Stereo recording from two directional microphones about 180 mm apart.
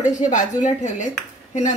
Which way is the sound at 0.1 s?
45° left (ahead or behind).